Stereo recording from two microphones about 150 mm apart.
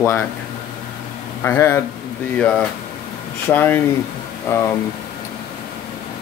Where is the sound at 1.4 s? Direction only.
15° left (ahead or behind).